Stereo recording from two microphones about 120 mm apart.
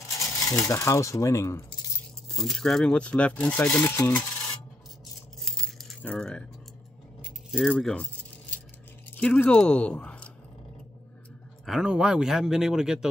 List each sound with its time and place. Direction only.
0.1 s speech: 25° left (ahead or behind)
2.3 s speech: 5° left (ahead or behind)
5.4 s a sound: centre (ahead or behind)
6.0 s speech: 10° left (ahead or behind)
7.5 s speech: 5° left (ahead or behind)
11.6 s speech: 5° right (ahead or behind)